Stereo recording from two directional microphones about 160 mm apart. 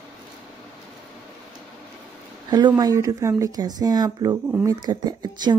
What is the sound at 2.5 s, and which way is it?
Speech, 25° right (ahead or behind).